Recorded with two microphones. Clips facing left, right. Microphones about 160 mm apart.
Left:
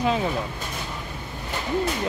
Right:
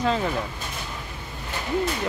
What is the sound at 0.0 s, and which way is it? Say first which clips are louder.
Speech: left 1 dB; 15° left (ahead or behind).